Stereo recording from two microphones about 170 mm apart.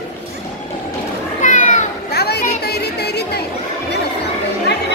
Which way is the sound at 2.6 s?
70° left (ahead or behind).